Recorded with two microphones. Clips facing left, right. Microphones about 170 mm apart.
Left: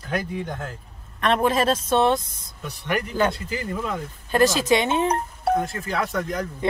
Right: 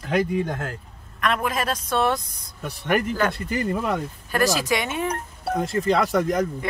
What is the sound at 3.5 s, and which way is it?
Speech, 65° right (ahead or behind).